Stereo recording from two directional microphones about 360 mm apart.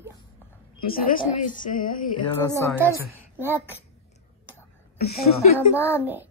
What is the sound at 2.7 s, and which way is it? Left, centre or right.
Speech, centre.